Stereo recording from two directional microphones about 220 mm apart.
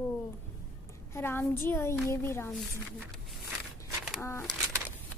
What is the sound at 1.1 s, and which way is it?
Speech, 10° left (ahead or behind).